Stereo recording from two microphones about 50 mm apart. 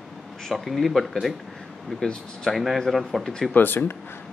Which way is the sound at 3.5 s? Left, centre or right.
Left.